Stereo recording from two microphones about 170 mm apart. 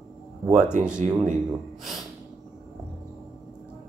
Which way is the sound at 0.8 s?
45° right (ahead or behind).